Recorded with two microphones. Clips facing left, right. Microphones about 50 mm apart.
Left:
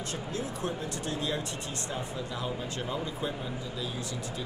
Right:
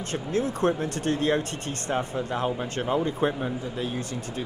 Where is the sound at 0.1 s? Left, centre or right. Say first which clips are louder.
Right 11 dB; right.